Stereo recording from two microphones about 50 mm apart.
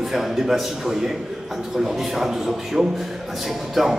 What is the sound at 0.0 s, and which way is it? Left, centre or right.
A man's voice, centre.